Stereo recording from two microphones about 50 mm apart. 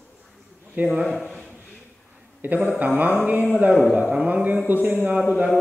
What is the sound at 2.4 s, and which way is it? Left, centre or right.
Speech, right.